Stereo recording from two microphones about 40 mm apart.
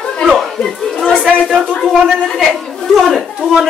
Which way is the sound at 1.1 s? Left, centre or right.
Right.